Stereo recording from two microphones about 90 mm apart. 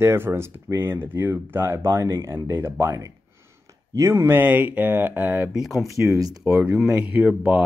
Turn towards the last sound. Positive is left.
turn(degrees=-10)  # may be behind; listen again after turning